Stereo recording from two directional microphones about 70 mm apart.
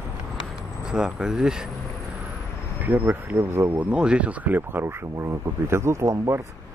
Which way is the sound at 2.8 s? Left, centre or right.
Right.